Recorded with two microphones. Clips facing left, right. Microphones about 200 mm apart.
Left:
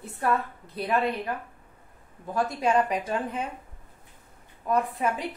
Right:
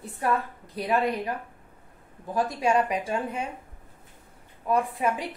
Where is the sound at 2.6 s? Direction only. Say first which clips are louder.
Even; 10° right (ahead or behind).